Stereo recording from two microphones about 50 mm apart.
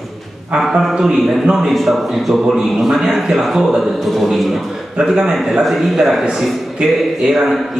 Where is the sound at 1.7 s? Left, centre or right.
Centre.